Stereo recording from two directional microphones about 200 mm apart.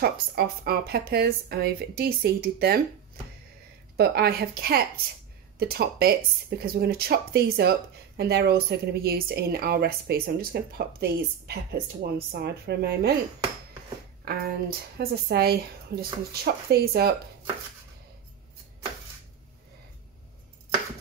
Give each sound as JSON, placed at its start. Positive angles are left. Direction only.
{"t": 0.0, "sound": "speech", "side_deg": -50}
{"t": 3.9, "sound": "speech", "side_deg": -55}
{"t": 14.2, "sound": "speech", "side_deg": -50}